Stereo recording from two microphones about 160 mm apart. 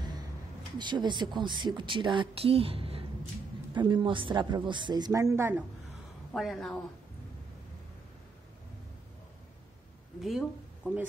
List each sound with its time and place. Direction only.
0.7 s speech: 30° right (ahead or behind)
6.3 s speech: centre (ahead or behind)
10.2 s speech: centre (ahead or behind)